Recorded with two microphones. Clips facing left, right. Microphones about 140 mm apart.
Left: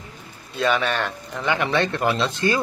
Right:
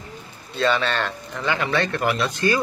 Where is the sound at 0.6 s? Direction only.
10° left (ahead or behind).